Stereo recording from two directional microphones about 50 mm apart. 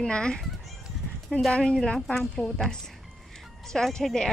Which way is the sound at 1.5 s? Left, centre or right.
Centre.